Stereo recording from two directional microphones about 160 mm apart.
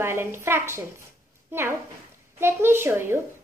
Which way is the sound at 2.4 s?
15° right (ahead or behind).